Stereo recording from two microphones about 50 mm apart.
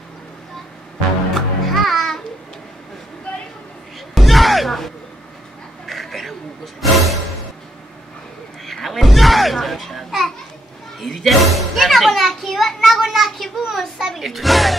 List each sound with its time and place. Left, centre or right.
1.3 s music: centre
3.3 s a sound: left
4.1 s music: centre
8.6 s a sound: centre
11.0 s children playing: centre
13.6 s music: centre